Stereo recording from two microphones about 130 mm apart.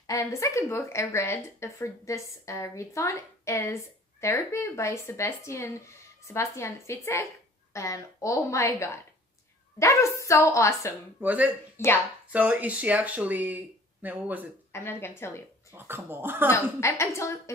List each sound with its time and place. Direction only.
0.0 s speech: 25° left (ahead or behind)
11.2 s speech: 10° right (ahead or behind)
11.7 s speech: 20° left (ahead or behind)
12.3 s speech: 10° right (ahead or behind)
14.7 s speech: 20° left (ahead or behind)
15.7 s speech: 15° right (ahead or behind)
16.5 s speech: 20° left (ahead or behind)